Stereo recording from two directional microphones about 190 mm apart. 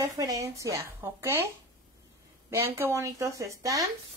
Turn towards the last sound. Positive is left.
turn(degrees=-15)  # may be behind; listen again after turning